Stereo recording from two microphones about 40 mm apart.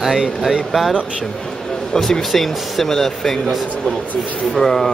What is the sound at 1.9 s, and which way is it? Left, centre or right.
Speech, centre.